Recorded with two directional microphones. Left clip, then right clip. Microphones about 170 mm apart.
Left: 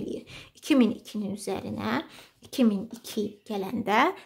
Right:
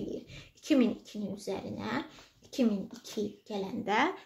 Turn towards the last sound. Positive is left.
turn(degrees=45)  # may be behind; listen again after turning